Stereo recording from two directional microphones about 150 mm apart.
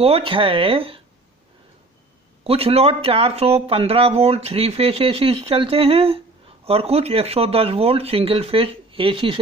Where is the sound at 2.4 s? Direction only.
40° right (ahead or behind).